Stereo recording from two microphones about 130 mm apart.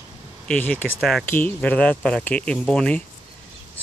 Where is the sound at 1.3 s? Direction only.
15° left (ahead or behind).